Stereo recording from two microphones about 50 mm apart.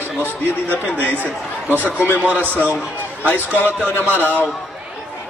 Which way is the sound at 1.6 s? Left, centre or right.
Right.